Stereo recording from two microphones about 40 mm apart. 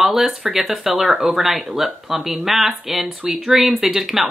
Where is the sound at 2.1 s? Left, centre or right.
Centre.